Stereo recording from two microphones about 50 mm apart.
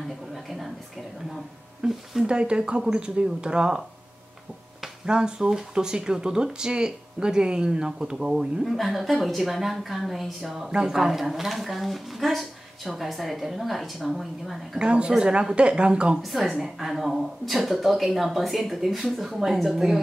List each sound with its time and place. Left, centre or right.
1.8 s speech: centre
5.0 s speech: centre
8.7 s a woman's voice: centre
14.8 s speech: centre
16.2 s a woman's voice: centre